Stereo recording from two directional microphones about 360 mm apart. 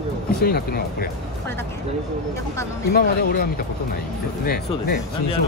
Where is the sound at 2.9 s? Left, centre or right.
Left.